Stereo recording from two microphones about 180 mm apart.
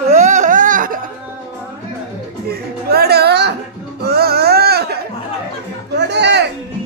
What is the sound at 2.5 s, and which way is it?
Music, 60° right (ahead or behind).